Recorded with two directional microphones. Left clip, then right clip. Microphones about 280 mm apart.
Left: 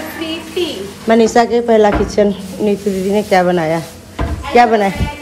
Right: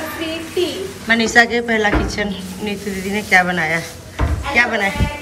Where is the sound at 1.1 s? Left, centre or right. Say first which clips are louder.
Left 3 dB; left.